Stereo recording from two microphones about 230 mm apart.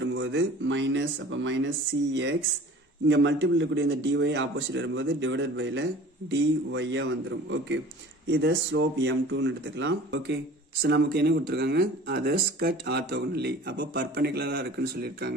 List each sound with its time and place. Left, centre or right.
0.0 s speech: right
3.1 s speech: right